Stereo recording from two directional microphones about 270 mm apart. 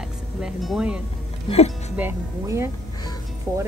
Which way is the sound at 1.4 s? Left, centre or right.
Left.